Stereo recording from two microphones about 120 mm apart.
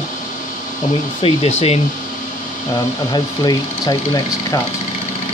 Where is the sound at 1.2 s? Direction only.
60° left (ahead or behind).